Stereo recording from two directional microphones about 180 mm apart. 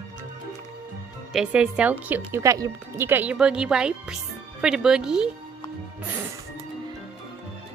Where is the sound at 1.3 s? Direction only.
5° right (ahead or behind).